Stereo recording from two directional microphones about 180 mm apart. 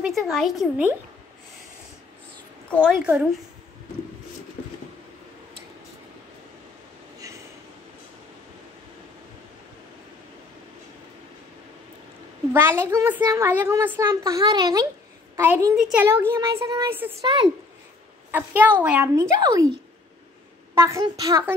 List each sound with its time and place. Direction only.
0.0 s speech: centre (ahead or behind)
3.0 s a woman's voice: 5° right (ahead or behind)
12.5 s a woman's voice: 15° right (ahead or behind)
17.2 s speech: 30° right (ahead or behind)
18.3 s a woman's voice: 10° right (ahead or behind)
19.4 s speech: 20° right (ahead or behind)
20.7 s a woman's voice: 15° right (ahead or behind)